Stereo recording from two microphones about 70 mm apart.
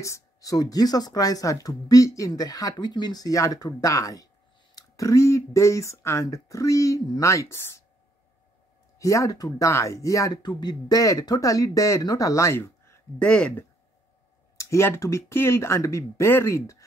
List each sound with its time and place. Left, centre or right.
0.0 s speech: left
8.9 s speech: left
9.7 s speech: left
10.3 s speech: left
12.5 s a sound: left
13.2 s speech: centre
14.6 s speech: left